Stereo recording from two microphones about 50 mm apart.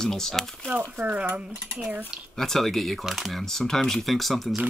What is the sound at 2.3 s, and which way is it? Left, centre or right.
Speech, centre.